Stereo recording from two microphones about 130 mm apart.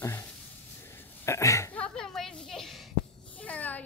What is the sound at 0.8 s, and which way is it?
Throat clearing, 20° left (ahead or behind).